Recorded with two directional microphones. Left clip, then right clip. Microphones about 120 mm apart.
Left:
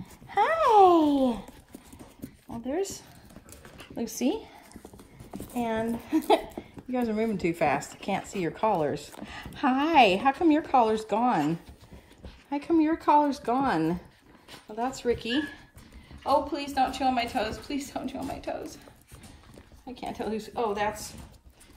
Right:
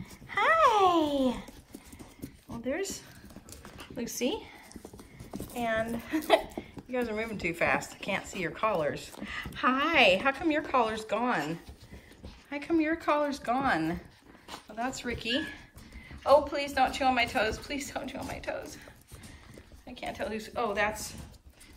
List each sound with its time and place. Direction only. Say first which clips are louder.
0.3 s a sound: left 2 dB; 40° left (ahead or behind)
2.5 s a sound: left 2 dB; 25° left (ahead or behind)
5.6 s a woman's voice: left 1 dB; 65° left (ahead or behind); by 13.8 s 40° left (ahead or behind)
15.0 s a woman's voice: left 6 dB; 25° left (ahead or behind)
19.9 s speech: left 2 dB; 50° left (ahead or behind)
20.4 s a woman's voice: left 1 dB; 30° left (ahead or behind)